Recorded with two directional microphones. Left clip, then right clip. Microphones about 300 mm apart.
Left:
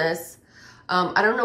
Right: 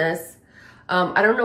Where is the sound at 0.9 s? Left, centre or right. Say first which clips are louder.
Right 2 dB; centre.